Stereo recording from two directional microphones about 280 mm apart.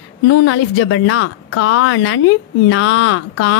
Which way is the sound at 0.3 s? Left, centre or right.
Left.